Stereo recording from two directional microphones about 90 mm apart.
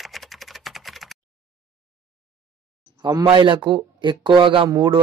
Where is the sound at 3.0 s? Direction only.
45° right (ahead or behind).